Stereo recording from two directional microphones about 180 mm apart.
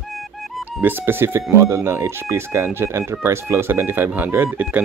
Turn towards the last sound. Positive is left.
turn(degrees=-10)  # may be behind; listen again after turning